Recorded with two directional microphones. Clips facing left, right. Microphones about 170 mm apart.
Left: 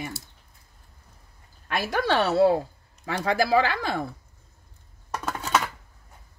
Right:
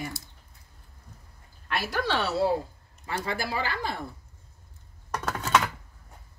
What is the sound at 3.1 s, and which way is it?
Speech, 90° left.